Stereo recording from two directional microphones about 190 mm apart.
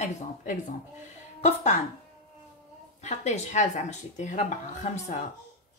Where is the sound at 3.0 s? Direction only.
40° left (ahead or behind).